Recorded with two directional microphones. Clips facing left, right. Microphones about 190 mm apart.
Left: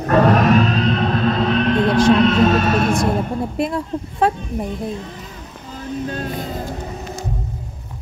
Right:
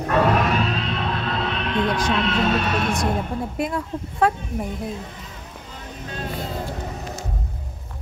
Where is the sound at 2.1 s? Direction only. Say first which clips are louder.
Left 7 dB; 45° left (ahead or behind).